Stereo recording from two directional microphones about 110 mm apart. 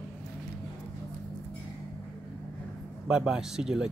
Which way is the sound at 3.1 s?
5° right (ahead or behind).